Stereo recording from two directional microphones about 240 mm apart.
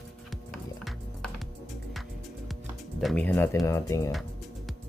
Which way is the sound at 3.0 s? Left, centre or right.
Centre.